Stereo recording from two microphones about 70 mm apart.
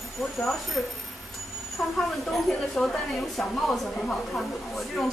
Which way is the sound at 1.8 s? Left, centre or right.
Centre.